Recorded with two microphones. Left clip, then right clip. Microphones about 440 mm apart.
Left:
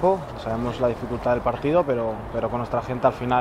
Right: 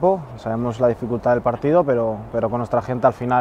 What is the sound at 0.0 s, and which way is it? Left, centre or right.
Speech, right.